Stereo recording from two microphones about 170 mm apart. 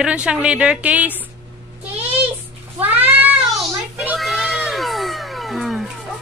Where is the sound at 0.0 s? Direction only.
5° right (ahead or behind).